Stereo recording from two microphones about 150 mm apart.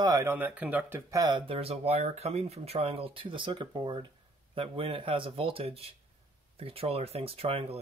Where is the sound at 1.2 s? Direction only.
35° right (ahead or behind).